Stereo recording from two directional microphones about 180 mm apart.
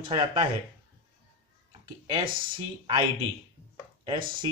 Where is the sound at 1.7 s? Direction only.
30° right (ahead or behind).